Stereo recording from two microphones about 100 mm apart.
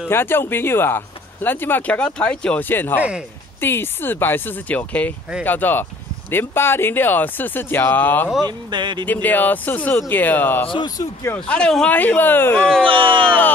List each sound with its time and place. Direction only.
0.1 s speech: 25° left (ahead or behind)
3.0 s speech: 10° right (ahead or behind)
3.6 s speech: 20° left (ahead or behind)
8.5 s speech: 45° right (ahead or behind)
9.0 s speech: 15° left (ahead or behind)
12.8 s speech: 60° right (ahead or behind)